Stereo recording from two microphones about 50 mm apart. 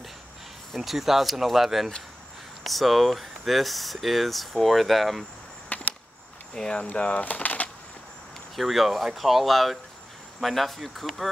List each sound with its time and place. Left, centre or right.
0.7 s speech: centre
5.7 s a sound: left
6.5 s speech: centre
6.8 s speech: left
8.5 s speech: centre